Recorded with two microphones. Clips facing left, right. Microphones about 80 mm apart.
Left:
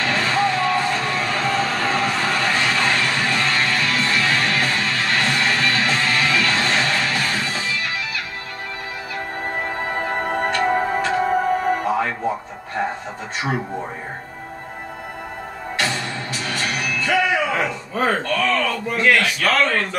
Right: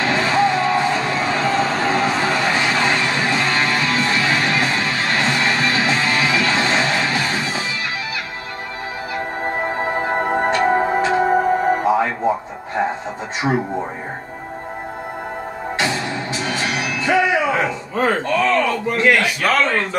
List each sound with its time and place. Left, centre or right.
0.0 s music: centre
9.8 s music: centre
13.4 s speech: right
15.8 s music: centre
18.2 s a sound: right